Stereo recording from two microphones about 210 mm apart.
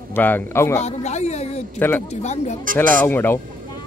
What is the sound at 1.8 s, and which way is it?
Speech, 10° left (ahead or behind).